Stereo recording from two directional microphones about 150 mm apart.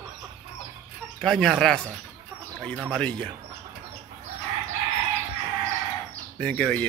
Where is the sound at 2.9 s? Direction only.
10° left (ahead or behind).